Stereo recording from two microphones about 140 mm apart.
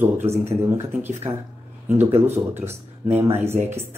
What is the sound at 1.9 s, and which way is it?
Speech, 50° right (ahead or behind).